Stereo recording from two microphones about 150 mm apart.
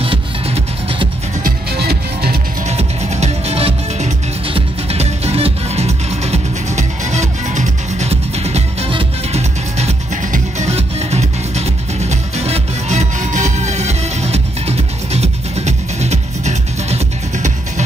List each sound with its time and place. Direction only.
1.4 s music: 90° right
2.7 s music: 45° right (ahead or behind)